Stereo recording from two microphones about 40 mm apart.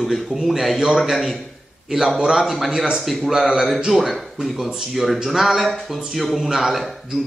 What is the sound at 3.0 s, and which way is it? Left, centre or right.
A man's voice, centre.